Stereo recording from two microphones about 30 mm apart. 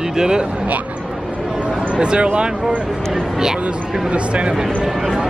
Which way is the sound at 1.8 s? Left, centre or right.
Right.